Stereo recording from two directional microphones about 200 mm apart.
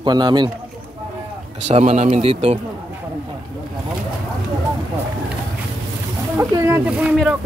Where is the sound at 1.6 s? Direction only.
35° right (ahead or behind).